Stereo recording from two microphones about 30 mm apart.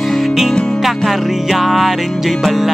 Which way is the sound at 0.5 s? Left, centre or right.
Left.